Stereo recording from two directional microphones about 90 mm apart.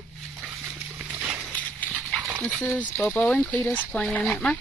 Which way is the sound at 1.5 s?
15° left (ahead or behind).